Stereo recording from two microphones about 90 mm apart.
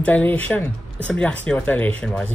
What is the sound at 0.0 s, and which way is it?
Speech, 20° left (ahead or behind).